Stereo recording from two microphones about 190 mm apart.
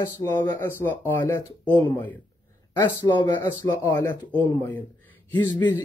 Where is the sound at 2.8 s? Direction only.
20° left (ahead or behind).